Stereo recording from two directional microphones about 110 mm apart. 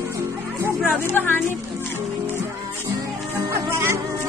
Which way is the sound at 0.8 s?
20° left (ahead or behind).